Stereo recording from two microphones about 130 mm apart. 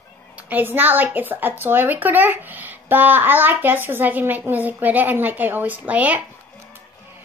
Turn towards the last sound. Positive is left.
turn(degrees=-10)  # may be behind; listen again after turning